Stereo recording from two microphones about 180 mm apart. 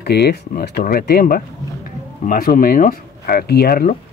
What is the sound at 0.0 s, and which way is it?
Speech, 65° left (ahead or behind).